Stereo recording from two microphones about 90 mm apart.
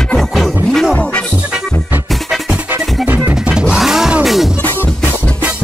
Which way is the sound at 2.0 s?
Centre (ahead or behind).